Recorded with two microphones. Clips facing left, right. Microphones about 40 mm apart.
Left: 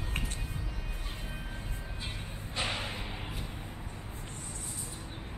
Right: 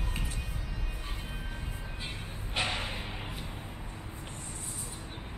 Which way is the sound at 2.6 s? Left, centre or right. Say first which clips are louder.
Right 2 dB; right.